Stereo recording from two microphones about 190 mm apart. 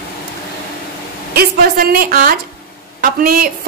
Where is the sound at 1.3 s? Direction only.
50° right (ahead or behind).